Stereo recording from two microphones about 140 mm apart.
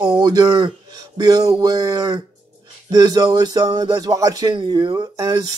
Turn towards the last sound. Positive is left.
turn(degrees=-30)  # may be behind; listen again after turning